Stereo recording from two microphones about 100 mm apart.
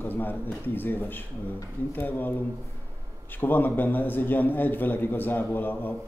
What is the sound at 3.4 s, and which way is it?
A man's voice, 20° left (ahead or behind).